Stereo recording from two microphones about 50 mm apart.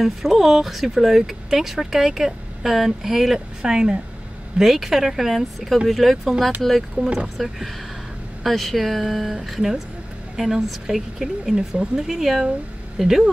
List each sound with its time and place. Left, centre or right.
0.0 s speech: centre
4.6 s speech: centre
7.0 s speech: right
7.3 s speech: centre